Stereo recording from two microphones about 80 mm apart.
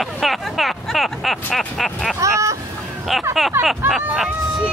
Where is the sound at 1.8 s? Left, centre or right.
Centre.